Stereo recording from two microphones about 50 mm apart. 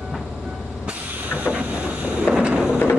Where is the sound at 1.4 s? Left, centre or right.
Right.